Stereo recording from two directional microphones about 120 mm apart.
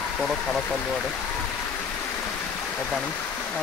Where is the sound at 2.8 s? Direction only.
5° left (ahead or behind).